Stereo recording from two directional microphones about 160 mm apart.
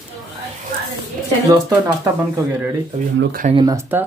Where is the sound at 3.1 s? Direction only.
60° right (ahead or behind).